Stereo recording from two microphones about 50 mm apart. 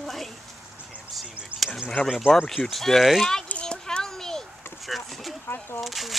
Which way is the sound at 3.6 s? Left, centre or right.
Centre.